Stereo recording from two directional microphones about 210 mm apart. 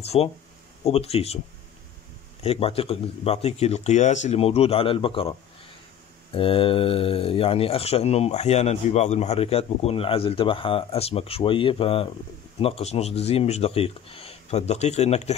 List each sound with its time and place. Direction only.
0.0 s speech: 30° left (ahead or behind)
2.4 s speech: 30° left (ahead or behind)
6.3 s speech: 25° left (ahead or behind)